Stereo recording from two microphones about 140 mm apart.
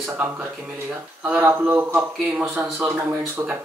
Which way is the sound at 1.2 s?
15° right (ahead or behind).